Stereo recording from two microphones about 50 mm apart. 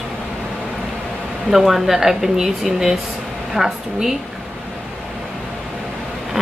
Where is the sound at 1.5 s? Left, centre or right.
Centre.